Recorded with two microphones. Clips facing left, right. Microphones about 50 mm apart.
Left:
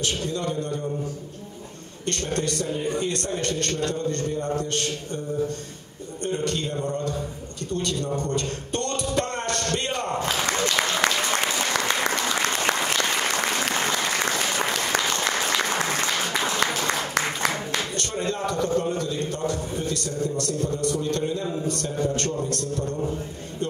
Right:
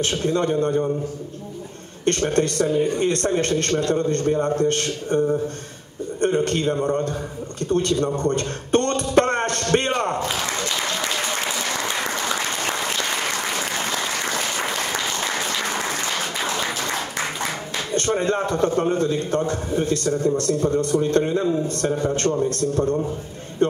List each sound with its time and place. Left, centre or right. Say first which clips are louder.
0.0 s a man's voice: right 6 dB; right
2.0 s a man's voice: right 7 dB; right
6.2 s a man's voice: right 7 dB; right
7.7 s a sound: right 6 dB; right
17.9 s a man's voice: right 7 dB; right